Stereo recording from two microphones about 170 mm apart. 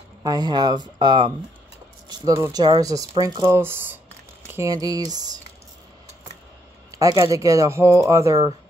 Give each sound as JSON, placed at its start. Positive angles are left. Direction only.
{"t": 0.2, "sound": "speech", "side_deg": -25}
{"t": 6.9, "sound": "speech", "side_deg": -20}